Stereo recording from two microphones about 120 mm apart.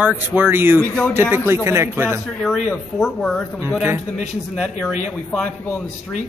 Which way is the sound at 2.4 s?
5° left (ahead or behind).